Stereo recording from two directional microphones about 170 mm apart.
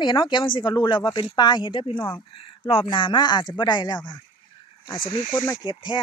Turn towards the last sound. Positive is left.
turn(degrees=25)  # may be behind; listen again after turning